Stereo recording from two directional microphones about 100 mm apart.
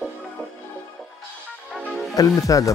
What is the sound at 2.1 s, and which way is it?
Speech, 35° left (ahead or behind).